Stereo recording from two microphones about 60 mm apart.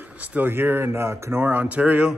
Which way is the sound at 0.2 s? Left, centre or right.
Right.